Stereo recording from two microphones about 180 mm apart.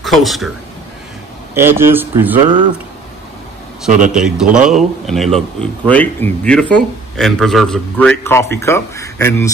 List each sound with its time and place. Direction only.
0.0 s a man's voice: centre (ahead or behind)
1.5 s speech: 15° right (ahead or behind)
2.4 s speech: 25° right (ahead or behind)
4.1 s a man's voice: 5° right (ahead or behind); by 9.5 s 15° left (ahead or behind)